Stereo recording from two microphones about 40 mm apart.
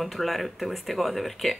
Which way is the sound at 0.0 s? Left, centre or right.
Centre.